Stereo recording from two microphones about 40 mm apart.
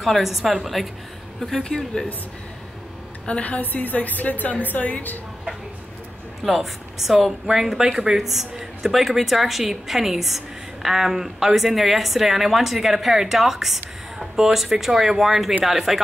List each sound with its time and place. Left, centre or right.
0.0 s speech: centre
1.5 s a woman's voice: centre
3.3 s a woman's voice: left
6.4 s a woman's voice: centre